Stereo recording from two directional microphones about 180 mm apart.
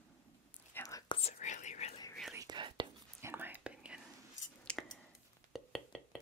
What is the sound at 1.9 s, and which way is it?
Whispering, 20° left (ahead or behind).